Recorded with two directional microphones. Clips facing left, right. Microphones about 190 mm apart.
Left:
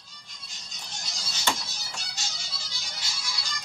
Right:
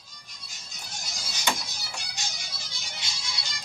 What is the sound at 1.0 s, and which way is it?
Music, 10° right (ahead or behind).